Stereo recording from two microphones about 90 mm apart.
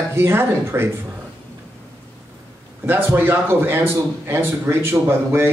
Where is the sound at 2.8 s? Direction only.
25° right (ahead or behind).